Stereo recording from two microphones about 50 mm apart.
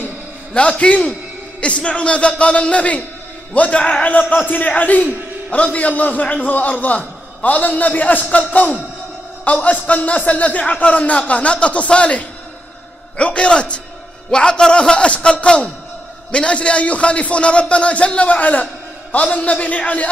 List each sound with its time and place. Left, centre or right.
0.6 s a man's voice: left